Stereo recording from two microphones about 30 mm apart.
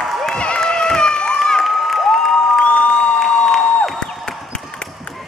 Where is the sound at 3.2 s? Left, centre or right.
Centre.